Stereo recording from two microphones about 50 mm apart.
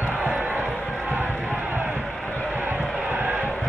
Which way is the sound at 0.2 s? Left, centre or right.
Right.